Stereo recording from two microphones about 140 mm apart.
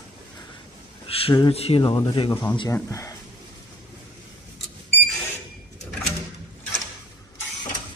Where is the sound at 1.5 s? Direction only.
45° left (ahead or behind).